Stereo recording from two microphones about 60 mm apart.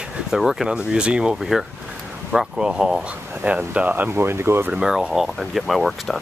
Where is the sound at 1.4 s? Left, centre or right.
Centre.